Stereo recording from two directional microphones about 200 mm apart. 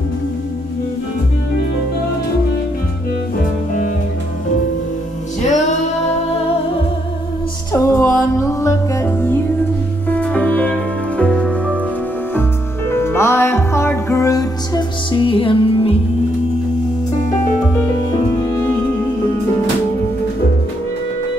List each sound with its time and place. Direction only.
5.4 s music: 35° left (ahead or behind)
7.7 s music: 15° left (ahead or behind)
18.4 s music: 15° left (ahead or behind)